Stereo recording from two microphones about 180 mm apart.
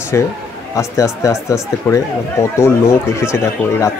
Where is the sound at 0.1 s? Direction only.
15° left (ahead or behind).